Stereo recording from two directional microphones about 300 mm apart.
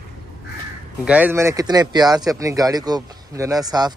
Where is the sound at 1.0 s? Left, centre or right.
Centre.